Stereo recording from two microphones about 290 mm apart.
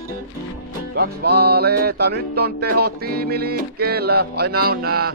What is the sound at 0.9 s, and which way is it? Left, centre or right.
Music, right.